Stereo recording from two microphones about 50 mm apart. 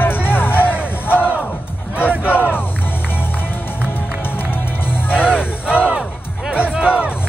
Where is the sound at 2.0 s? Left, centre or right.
Left.